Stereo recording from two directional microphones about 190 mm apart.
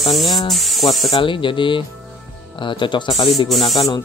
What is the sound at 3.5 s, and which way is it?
Speech, centre (ahead or behind).